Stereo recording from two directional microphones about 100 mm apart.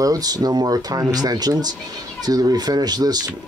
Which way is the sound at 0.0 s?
35° right (ahead or behind).